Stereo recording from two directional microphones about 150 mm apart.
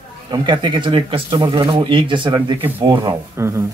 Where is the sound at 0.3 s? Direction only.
30° right (ahead or behind).